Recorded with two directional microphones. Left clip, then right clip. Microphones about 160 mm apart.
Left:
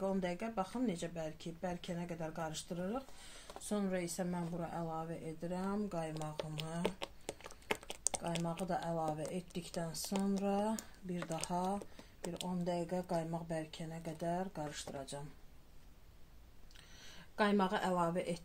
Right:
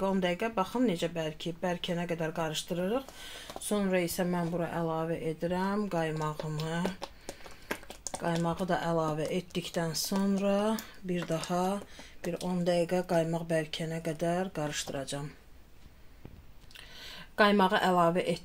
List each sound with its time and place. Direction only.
0.0 s speech: 50° right (ahead or behind)
8.2 s speech: 50° right (ahead or behind)
17.4 s speech: 50° right (ahead or behind)